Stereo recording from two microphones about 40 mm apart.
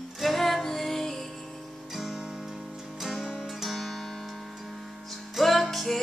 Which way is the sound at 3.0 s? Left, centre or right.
Centre.